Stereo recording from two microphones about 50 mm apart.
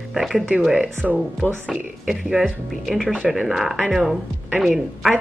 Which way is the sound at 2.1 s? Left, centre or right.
Centre.